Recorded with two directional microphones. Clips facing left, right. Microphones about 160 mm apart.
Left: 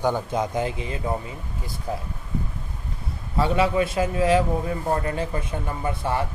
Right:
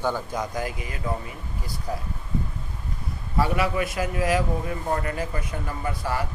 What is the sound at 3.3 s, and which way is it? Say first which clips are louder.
Speech: left 3 dB; 25° left (ahead or behind).